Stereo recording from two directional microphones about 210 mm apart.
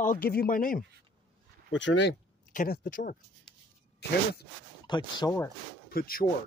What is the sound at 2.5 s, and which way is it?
Speech, 45° left (ahead or behind).